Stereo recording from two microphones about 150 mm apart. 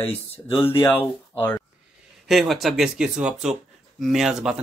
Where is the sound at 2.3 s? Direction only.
Centre (ahead or behind).